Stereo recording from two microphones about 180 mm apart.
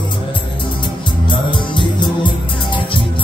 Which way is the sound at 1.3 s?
25° left (ahead or behind).